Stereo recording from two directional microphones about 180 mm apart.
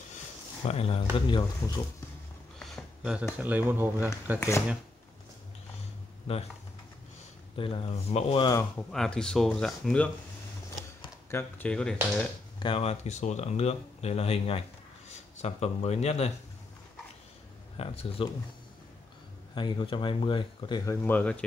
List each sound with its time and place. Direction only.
0.7 s speech: 35° left (ahead or behind)
2.6 s a sound: centre (ahead or behind)
3.3 s speech: 10° right (ahead or behind)
4.4 s speech: 15° left (ahead or behind)
7.5 s speech: 30° left (ahead or behind)
8.5 s speech: 5° left (ahead or behind)
10.8 s speech: 15° left (ahead or behind)
12.5 s speech: 30° left (ahead or behind)
17.7 s speech: 30° left (ahead or behind)
19.5 s speech: 25° left (ahead or behind); by 21.5 s 5° left (ahead or behind)